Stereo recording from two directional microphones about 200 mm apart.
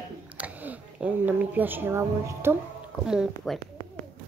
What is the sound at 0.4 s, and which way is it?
Speech, 10° right (ahead or behind).